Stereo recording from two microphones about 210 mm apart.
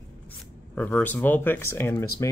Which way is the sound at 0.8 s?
10° left (ahead or behind).